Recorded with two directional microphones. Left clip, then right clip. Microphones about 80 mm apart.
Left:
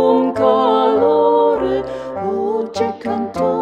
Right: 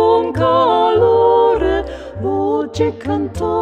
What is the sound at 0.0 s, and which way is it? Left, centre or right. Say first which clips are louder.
Music: even; left.